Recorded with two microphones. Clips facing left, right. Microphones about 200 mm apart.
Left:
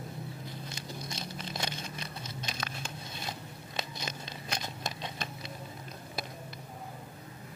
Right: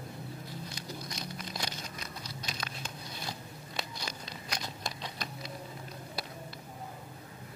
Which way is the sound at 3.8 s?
20° left (ahead or behind).